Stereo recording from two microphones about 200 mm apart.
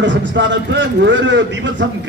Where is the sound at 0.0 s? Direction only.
65° right (ahead or behind).